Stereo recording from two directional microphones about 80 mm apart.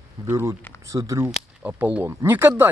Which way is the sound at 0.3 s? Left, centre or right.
Right.